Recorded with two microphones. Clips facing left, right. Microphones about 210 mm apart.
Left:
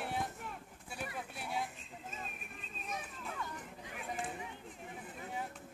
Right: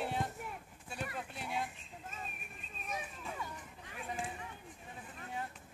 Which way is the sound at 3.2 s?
10° right (ahead or behind).